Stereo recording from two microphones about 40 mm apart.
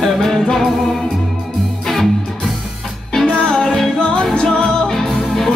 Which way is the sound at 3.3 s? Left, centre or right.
Centre.